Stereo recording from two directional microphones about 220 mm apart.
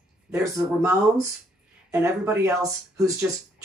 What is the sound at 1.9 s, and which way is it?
Speech, 15° right (ahead or behind).